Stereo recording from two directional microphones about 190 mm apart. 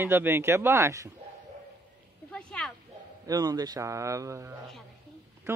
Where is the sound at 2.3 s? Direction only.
5° left (ahead or behind).